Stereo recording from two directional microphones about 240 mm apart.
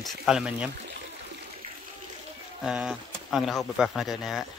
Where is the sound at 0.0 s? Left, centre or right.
Centre.